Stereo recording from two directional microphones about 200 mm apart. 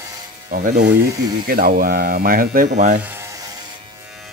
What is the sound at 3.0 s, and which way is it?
Rub, 15° right (ahead or behind).